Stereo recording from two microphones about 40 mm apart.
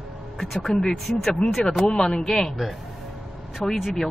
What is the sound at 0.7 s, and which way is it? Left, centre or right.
Speech, centre.